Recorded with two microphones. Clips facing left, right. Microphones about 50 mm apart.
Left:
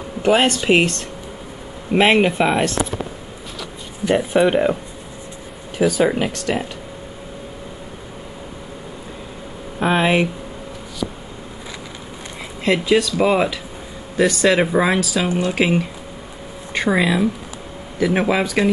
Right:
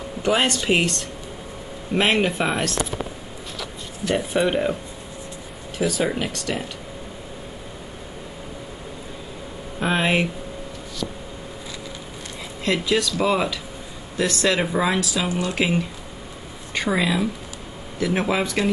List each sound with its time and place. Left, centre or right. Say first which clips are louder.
0.2 s speech: left 5 dB; centre
2.0 s speech: left 5 dB; centre
5.8 s speech: left 6 dB; centre
9.8 s speech: left 4 dB; centre
11.0 s a sound: left 4 dB; left
12.6 s speech: left 5 dB; centre